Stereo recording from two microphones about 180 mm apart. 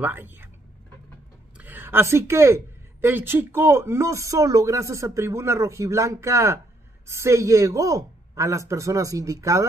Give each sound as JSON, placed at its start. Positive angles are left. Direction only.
{"t": 0.0, "sound": "speech", "side_deg": -10}
{"t": 1.6, "sound": "speech", "side_deg": -10}